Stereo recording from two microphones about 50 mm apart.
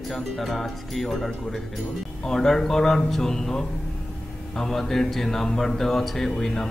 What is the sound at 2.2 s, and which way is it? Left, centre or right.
Mantra, centre.